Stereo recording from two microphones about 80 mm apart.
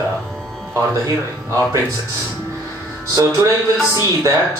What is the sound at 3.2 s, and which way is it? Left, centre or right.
Speech, right.